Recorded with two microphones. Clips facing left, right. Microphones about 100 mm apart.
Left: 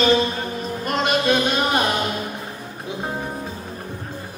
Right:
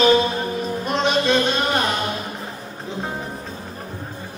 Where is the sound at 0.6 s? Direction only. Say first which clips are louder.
Left 1 dB; centre (ahead or behind).